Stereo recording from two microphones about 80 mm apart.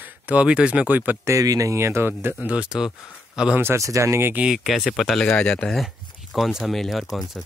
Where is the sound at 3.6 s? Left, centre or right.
Right.